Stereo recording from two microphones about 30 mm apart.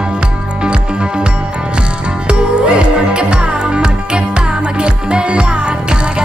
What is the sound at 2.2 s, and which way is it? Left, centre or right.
Music, right.